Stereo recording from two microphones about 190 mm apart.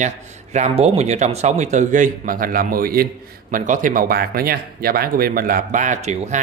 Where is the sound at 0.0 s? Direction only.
35° right (ahead or behind).